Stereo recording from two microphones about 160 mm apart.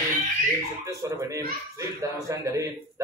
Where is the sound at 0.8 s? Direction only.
20° right (ahead or behind).